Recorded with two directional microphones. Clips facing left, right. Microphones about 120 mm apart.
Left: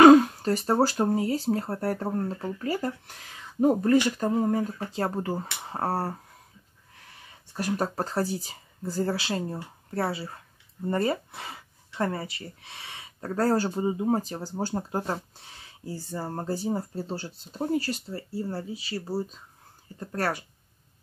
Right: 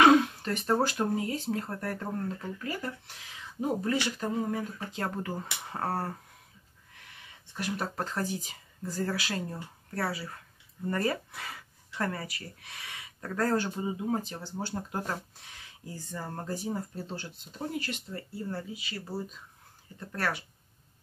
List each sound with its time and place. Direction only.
0.0 s speech: 40° left (ahead or behind)
3.1 s speech: 45° left (ahead or behind); by 6.1 s 30° left (ahead or behind)
7.5 s speech: 40° left (ahead or behind)